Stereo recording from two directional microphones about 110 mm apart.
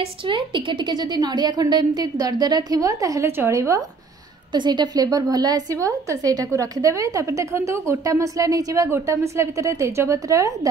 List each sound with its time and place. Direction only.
0.0 s a woman's voice: 50° right (ahead or behind); by 3.8 s 25° right (ahead or behind)
4.5 s a woman's voice: 45° right (ahead or behind)